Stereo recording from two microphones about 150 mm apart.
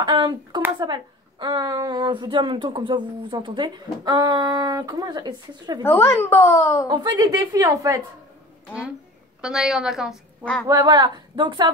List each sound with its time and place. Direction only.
0.0 s a woman's voice: 30° right (ahead or behind)
5.8 s speech: 15° left (ahead or behind)
6.9 s a woman's voice: 25° right (ahead or behind)
9.4 s a woman's voice: 5° right (ahead or behind)
10.4 s speech: 10° left (ahead or behind)
10.7 s a woman's voice: 25° right (ahead or behind)